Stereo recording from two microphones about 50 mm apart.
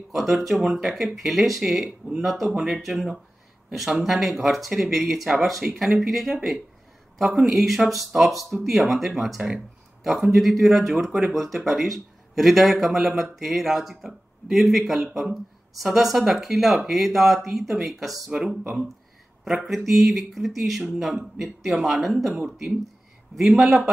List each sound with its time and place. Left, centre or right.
0.1 s speech: centre
2.2 s speech: centre
19.6 s speech: centre